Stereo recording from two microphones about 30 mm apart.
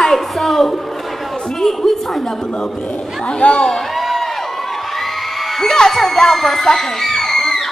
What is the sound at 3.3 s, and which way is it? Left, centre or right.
Speech, left.